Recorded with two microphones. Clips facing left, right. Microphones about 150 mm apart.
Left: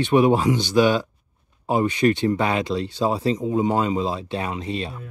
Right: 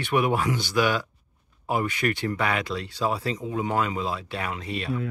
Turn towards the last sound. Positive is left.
turn(degrees=25)  # may be behind; listen again after turning